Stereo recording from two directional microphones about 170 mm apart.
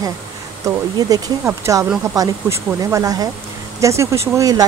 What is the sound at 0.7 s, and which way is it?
Speech, 20° right (ahead or behind).